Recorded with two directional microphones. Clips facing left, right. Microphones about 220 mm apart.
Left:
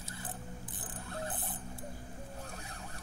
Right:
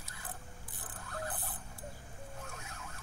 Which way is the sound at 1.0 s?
25° left (ahead or behind).